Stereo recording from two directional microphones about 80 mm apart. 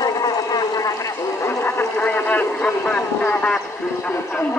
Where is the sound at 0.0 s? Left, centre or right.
Left.